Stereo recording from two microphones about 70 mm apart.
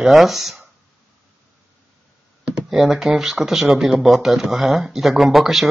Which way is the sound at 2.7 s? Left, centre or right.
Centre.